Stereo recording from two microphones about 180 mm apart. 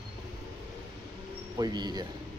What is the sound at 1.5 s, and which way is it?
Speech, 20° right (ahead or behind).